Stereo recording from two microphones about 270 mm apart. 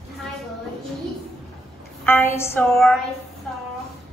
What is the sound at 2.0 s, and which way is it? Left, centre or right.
Speech, centre.